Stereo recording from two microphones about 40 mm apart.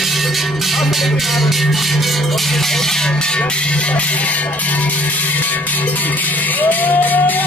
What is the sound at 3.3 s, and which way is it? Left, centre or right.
Speech, left.